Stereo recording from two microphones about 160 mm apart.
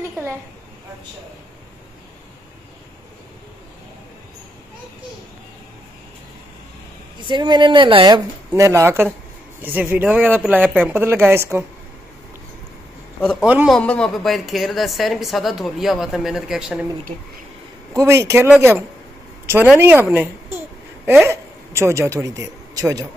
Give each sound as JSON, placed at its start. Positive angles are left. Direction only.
{"t": 7.2, "sound": "a woman's voice", "side_deg": -30}
{"t": 8.5, "sound": "speech", "side_deg": -15}
{"t": 13.2, "sound": "a woman's voice", "side_deg": 5}
{"t": 17.9, "sound": "speech", "side_deg": -20}
{"t": 20.5, "sound": "a sound", "side_deg": -10}